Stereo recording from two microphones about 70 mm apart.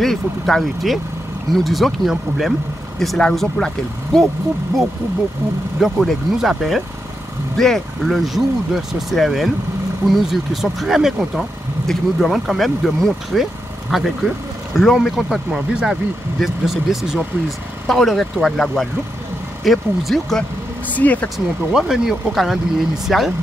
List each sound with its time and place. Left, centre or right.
0.0 s speech: centre
5.8 s speech: centre
17.8 s speech: centre
20.9 s speech: left
21.7 s speech: centre